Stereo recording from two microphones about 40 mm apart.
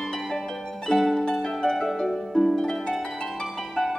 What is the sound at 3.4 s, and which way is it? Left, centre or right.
Music, centre.